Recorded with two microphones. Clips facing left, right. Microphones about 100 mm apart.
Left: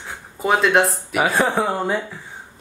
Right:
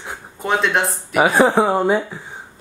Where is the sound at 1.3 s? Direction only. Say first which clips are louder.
Right 6 dB; 20° right (ahead or behind).